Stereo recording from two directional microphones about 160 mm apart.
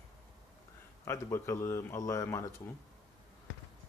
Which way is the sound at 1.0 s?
20° left (ahead or behind).